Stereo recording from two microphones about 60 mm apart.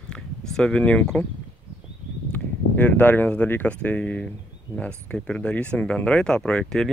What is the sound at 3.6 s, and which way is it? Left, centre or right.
Speech, left.